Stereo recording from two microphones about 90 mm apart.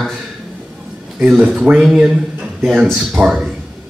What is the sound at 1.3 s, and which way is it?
A man's voice, 10° right (ahead or behind).